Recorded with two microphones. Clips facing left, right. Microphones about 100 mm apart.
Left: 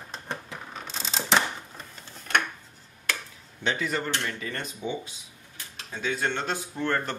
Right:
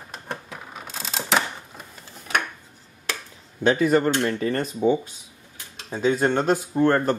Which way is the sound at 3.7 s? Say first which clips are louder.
Right 10 dB; 45° right (ahead or behind).